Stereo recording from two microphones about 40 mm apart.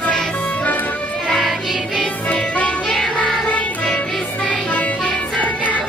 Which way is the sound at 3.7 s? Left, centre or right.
Left.